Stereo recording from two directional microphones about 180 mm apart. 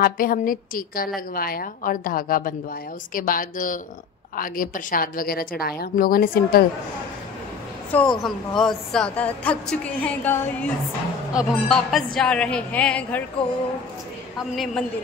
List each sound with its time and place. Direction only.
0.0 s a woman's voice: 50° left (ahead or behind)
7.9 s a woman's voice: 5° left (ahead or behind)
14.5 s a woman's voice: centre (ahead or behind)